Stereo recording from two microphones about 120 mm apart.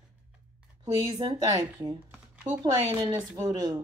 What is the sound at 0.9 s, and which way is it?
Speech, 35° right (ahead or behind).